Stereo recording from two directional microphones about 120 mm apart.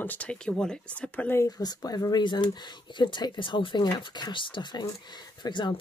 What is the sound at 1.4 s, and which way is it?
Speech, 30° left (ahead or behind).